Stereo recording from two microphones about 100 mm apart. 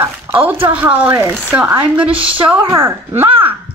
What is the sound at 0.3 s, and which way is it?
A woman's voice, 20° right (ahead or behind).